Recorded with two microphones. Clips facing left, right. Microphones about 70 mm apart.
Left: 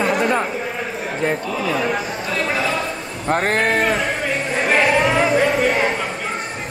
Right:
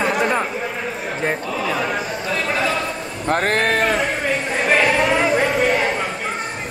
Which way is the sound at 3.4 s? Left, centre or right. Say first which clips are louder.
Even; right.